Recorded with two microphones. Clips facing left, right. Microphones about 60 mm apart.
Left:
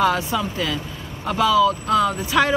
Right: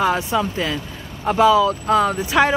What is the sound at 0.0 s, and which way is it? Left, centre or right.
Speech, right.